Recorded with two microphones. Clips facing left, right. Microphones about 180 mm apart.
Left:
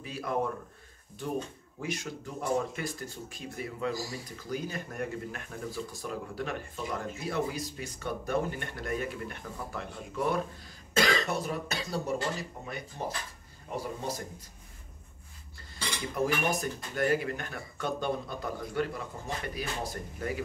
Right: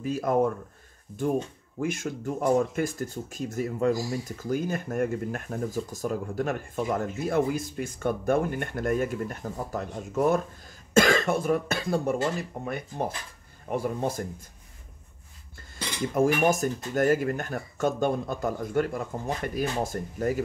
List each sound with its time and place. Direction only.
0.0 s speech: 45° right (ahead or behind)
1.8 s speech: 50° right (ahead or behind)
16.2 s speech: 45° right (ahead or behind)